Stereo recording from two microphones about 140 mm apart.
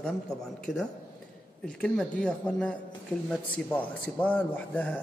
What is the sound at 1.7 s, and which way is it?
A man's voice, 5° left (ahead or behind).